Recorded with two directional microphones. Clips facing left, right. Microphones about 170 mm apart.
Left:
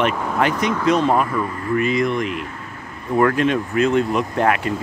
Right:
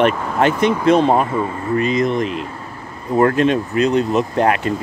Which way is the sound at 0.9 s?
30° right (ahead or behind).